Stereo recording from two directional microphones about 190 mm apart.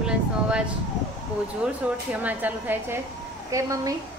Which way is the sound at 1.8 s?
5° right (ahead or behind).